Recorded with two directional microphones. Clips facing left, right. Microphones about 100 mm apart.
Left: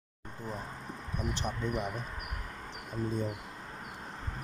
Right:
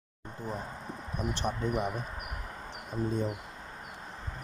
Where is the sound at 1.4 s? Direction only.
40° right (ahead or behind).